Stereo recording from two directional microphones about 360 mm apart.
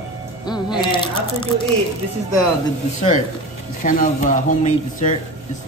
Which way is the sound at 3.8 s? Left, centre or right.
Left.